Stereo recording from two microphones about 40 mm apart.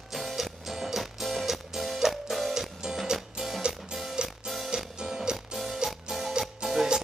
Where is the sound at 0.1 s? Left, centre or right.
Centre.